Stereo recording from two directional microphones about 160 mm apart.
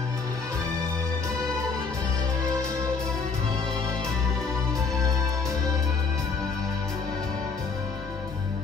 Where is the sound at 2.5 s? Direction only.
20° right (ahead or behind).